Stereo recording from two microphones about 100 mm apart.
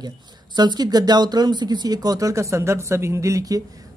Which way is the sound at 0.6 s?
45° right (ahead or behind).